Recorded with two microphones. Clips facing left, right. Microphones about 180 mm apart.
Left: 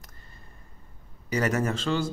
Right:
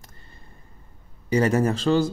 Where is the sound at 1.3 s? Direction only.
30° right (ahead or behind).